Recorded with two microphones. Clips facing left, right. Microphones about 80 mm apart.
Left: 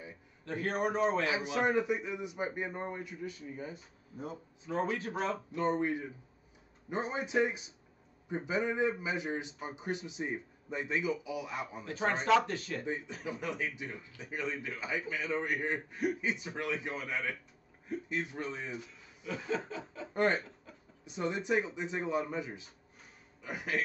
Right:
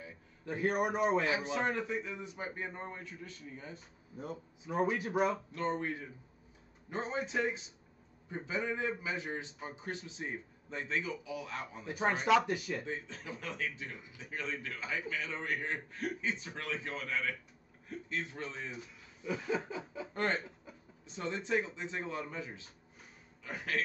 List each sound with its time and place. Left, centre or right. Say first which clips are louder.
0.5 s snicker: right 1 dB; centre
1.2 s a man's voice: left 2 dB; centre
4.6 s snicker: right 1 dB; centre
5.5 s a man's voice: left 4 dB; centre
11.8 s snicker: right 1 dB; centre
12.8 s a man's voice: left 4 dB; centre
19.2 s snicker: right 1 dB; centre
20.2 s a man's voice: left 5 dB; centre